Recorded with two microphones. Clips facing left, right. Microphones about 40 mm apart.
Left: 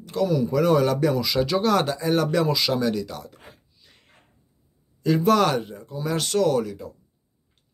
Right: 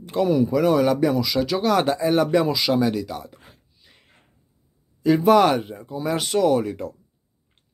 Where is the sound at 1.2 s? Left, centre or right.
Centre.